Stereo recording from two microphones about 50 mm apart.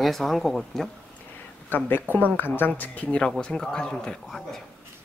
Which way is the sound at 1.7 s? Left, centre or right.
Left.